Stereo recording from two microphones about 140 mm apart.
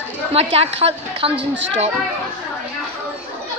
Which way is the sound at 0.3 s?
45° right (ahead or behind).